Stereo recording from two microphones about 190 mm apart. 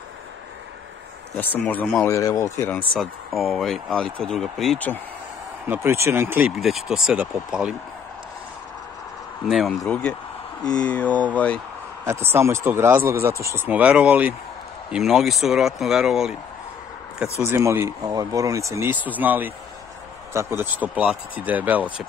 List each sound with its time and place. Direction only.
1.3 s speech: 10° left (ahead or behind)
2.0 s speech: 15° left (ahead or behind)
5.7 s speech: 15° right (ahead or behind)
9.5 s speech: centre (ahead or behind)
12.0 s speech: 15° right (ahead or behind)
17.5 s speech: 15° right (ahead or behind)